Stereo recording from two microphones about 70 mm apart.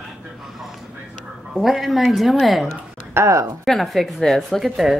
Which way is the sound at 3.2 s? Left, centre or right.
Right.